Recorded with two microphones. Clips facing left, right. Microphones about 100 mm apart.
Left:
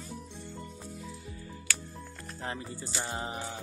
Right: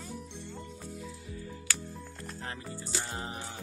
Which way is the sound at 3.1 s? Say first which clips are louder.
Left 3 dB; 15° left (ahead or behind).